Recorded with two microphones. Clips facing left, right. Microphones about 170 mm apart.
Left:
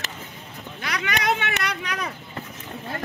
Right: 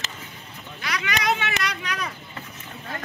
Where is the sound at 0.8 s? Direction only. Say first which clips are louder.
Left 1 dB; 55° left (ahead or behind).